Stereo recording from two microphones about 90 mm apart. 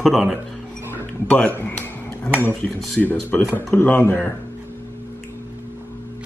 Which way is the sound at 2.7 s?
Centre (ahead or behind).